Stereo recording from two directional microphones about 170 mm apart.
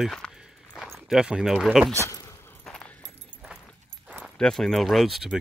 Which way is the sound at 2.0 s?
20° left (ahead or behind).